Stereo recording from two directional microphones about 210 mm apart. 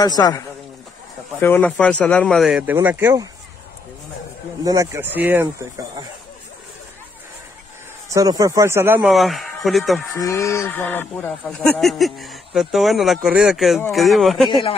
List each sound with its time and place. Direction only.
0.0 s speech: 20° left (ahead or behind)
1.4 s speech: 10° left (ahead or behind); by 3.3 s 10° right (ahead or behind)
4.6 s speech: 15° right (ahead or behind)
8.1 s speech: 15° right (ahead or behind); by 10.0 s centre (ahead or behind)
10.1 s speech: 15° left (ahead or behind)